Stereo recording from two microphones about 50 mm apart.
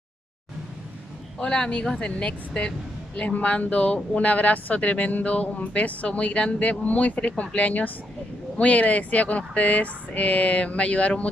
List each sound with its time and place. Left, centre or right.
1.4 s speech: centre